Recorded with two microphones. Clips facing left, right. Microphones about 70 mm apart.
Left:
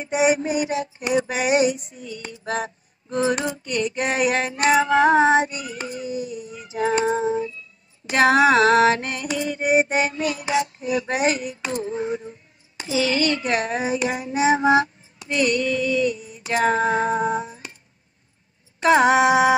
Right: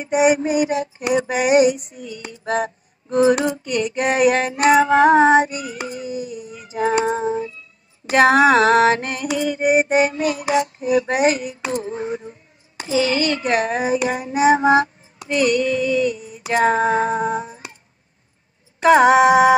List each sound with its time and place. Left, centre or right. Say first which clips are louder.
0.0 s music: right 3 dB; centre
8.0 s music: right 6 dB; centre
8.7 s speech: right 2 dB; centre
9.4 s music: right 3 dB; centre
10.8 s speech: right 5 dB; centre
12.8 s music: right 2 dB; centre
14.7 s female singing: right 2 dB; centre
16.6 s speech: right 2 dB; centre
17.1 s humming: right 1 dB; centre
18.9 s music: right 4 dB; centre